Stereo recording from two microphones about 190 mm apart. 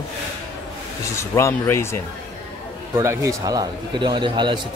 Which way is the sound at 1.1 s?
15° left (ahead or behind).